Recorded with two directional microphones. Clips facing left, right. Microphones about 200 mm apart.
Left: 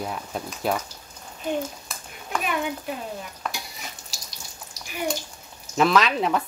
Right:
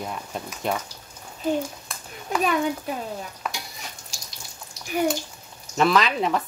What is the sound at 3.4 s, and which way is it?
Stir, 5° right (ahead or behind).